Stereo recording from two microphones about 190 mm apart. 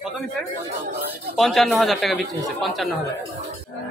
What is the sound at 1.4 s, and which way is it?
Speech, centre (ahead or behind).